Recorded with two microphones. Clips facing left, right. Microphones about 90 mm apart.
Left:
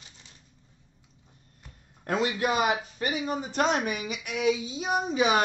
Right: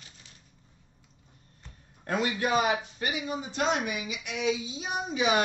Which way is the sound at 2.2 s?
25° left (ahead or behind).